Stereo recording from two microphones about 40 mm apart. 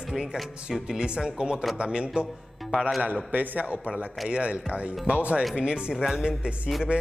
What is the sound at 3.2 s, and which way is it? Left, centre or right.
A man's voice, right.